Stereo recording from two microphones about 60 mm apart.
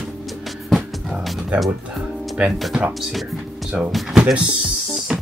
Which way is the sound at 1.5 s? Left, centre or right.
Right.